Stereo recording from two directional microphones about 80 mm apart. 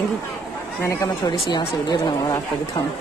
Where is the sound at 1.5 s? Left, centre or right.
Left.